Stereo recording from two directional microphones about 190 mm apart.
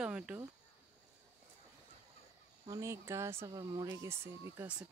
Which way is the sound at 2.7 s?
15° right (ahead or behind).